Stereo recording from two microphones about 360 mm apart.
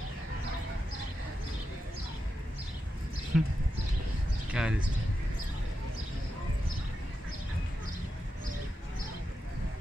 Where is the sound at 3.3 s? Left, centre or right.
Centre.